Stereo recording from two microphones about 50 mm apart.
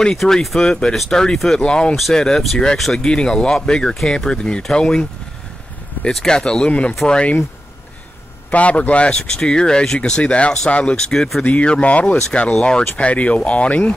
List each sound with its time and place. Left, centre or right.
0.2 s speech: centre
0.6 s speech: centre
1.6 s speech: centre
6.2 s speech: centre
8.5 s speech: left
11.1 s speech: centre
11.4 s speech: left
12.9 s speech: left